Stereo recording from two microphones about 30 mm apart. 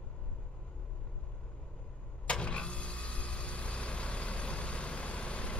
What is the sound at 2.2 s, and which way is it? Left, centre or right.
Vehicle, left.